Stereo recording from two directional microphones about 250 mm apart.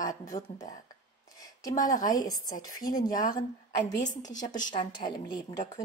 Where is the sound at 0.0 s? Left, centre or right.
Centre.